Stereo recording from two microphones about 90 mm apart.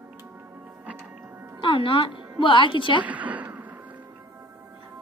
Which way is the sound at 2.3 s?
65° left (ahead or behind).